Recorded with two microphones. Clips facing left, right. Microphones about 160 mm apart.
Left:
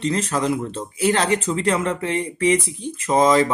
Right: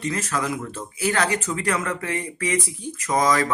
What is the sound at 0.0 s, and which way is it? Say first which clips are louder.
Speech: left 4 dB; 30° left (ahead or behind).